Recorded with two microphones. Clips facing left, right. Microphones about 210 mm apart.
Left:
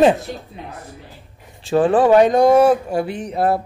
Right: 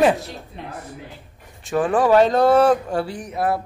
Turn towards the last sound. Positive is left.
turn(degrees=30)  # may be behind; listen again after turning